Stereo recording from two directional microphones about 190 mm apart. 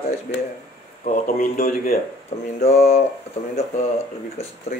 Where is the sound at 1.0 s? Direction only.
50° left (ahead or behind).